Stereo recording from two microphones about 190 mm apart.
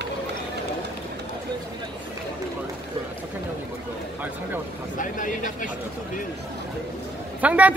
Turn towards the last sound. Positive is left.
turn(degrees=-5)  # may be behind; listen again after turning